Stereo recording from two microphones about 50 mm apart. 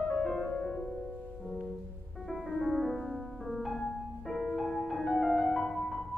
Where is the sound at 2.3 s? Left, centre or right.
Centre.